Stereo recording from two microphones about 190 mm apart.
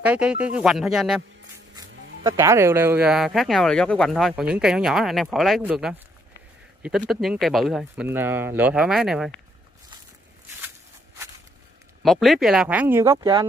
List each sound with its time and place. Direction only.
0.0 s speech: 5° right (ahead or behind)
2.0 s zipper: 70° right (ahead or behind)
2.2 s speech: 15° right (ahead or behind)
7.1 s speech: centre (ahead or behind)
12.0 s speech: centre (ahead or behind); by 13.5 s 20° right (ahead or behind)